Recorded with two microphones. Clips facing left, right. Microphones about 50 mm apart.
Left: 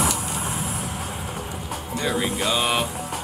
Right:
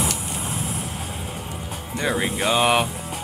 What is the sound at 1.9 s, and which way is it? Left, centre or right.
Speech, right.